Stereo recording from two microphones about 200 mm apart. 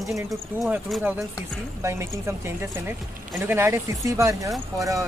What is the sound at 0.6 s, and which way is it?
Speech, 5° right (ahead or behind).